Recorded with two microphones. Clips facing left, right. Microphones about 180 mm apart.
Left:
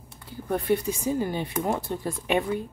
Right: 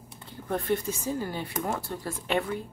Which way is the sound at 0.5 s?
15° left (ahead or behind).